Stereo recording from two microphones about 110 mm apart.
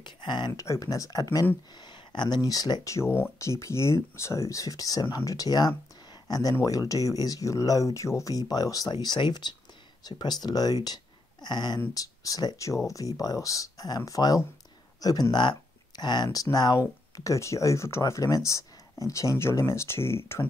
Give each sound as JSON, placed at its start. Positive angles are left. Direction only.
{"t": 0.0, "sound": "a sound", "side_deg": 45}
{"t": 0.5, "sound": "speech", "side_deg": 30}
{"t": 1.8, "sound": "speech", "side_deg": 45}